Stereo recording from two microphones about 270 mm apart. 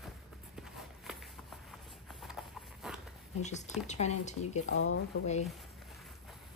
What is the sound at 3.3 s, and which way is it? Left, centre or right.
Speech, left.